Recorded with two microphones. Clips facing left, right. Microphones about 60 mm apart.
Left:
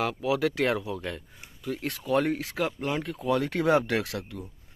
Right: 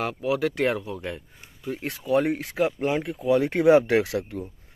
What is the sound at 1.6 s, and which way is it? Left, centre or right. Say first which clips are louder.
Speech: right 1 dB; right.